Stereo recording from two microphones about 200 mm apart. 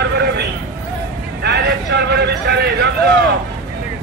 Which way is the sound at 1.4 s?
55° right (ahead or behind).